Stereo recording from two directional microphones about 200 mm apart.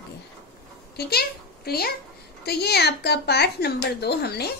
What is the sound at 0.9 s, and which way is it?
A child's voice, 50° left (ahead or behind).